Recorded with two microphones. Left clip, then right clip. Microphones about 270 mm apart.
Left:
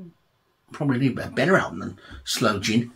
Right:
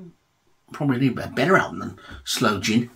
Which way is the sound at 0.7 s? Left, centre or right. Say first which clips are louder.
Right 1 dB; centre.